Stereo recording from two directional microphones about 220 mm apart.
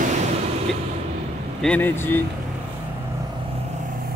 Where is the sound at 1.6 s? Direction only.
5° left (ahead or behind).